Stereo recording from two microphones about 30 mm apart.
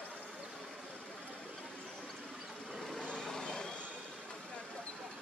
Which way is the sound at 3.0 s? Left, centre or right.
Left.